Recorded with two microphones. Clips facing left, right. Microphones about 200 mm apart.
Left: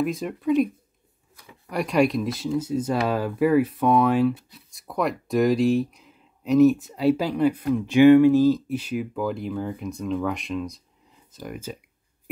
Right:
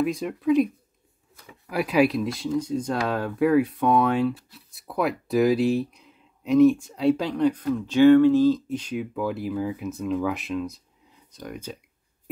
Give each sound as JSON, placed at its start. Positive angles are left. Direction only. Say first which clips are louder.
{"t": 0.0, "sound": "speech", "louder": "right 1 dB", "side_deg": 0}
{"t": 1.7, "sound": "speech", "louder": "even", "side_deg": -5}